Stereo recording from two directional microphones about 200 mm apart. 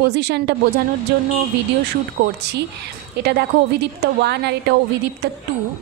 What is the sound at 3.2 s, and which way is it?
Speech, 55° right (ahead or behind).